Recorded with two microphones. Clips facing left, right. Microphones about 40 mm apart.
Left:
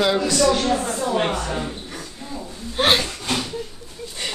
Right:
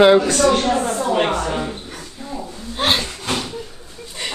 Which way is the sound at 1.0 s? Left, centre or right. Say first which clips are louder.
Right 3 dB; right.